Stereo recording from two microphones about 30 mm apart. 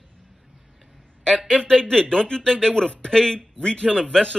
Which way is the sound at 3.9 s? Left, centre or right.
Centre.